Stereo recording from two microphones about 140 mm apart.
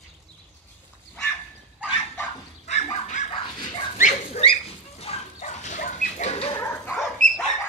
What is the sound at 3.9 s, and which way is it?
Dog, 60° left (ahead or behind).